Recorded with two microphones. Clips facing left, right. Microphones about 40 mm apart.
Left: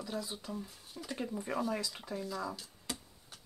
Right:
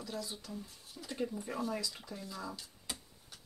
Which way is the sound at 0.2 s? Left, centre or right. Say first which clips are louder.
Left 2 dB; left.